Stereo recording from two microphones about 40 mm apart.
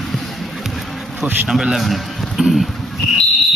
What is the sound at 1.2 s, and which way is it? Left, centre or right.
Speech, centre.